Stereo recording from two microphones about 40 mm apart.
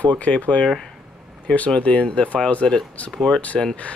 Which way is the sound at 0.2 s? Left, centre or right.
Left.